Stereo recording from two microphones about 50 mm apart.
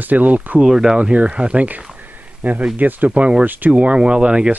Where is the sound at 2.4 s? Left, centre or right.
Right.